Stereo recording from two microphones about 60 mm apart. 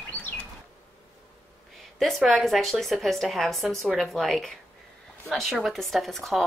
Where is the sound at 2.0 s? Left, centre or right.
Centre.